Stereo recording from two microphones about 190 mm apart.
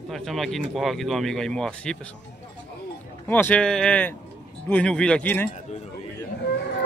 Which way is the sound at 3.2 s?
10° left (ahead or behind).